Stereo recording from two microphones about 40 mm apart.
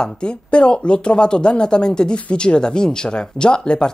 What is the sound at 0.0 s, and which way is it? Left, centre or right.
Speech, left.